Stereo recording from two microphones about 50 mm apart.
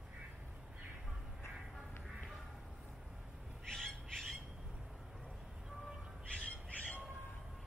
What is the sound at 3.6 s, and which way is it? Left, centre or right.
Owl, centre.